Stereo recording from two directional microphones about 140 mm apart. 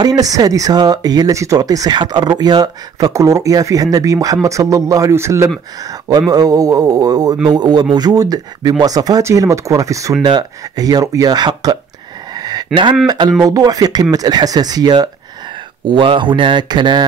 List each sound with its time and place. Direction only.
0.0 s speech: 25° right (ahead or behind)
12.4 s a sound: 30° right (ahead or behind)
13.0 s speech: 30° right (ahead or behind)